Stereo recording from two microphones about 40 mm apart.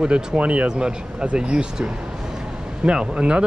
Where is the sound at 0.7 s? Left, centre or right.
Right.